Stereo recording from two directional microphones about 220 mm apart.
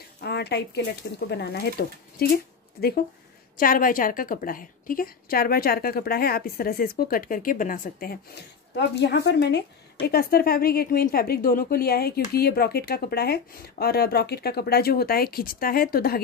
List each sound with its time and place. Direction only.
0.2 s a woman's voice: 50° left (ahead or behind)
8.7 s a woman's voice: 50° left (ahead or behind)